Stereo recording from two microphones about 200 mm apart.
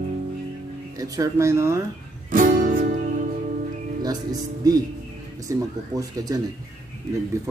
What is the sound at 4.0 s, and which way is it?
Speech, 20° right (ahead or behind).